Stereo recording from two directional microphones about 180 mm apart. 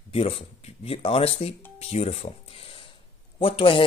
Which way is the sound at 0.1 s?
30° left (ahead or behind).